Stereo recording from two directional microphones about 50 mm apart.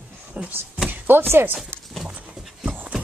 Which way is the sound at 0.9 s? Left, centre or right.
Right.